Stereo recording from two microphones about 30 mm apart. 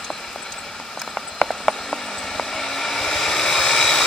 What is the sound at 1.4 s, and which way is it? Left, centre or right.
Vehicle, centre.